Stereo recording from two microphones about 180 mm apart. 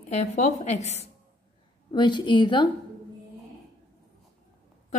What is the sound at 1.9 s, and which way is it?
Speech, 25° left (ahead or behind).